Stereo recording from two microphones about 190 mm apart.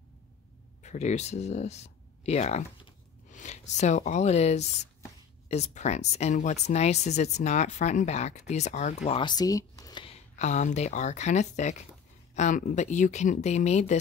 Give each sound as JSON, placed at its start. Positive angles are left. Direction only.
{"t": 0.8, "sound": "speech", "side_deg": 35}
{"t": 10.3, "sound": "speech", "side_deg": 40}